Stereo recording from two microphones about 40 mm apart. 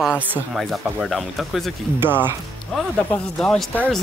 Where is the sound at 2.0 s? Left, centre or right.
Right.